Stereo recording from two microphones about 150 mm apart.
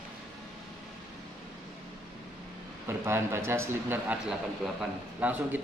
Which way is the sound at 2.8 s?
15° right (ahead or behind).